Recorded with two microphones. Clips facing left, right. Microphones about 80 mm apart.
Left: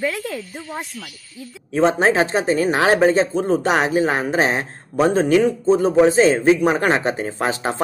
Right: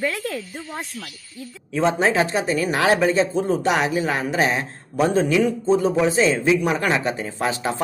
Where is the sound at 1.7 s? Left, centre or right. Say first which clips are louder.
Left 3 dB; left.